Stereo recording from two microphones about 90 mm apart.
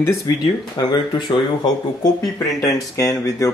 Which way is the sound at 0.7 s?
50° left (ahead or behind).